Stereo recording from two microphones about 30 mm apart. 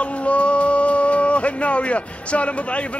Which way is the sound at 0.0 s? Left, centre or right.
Left.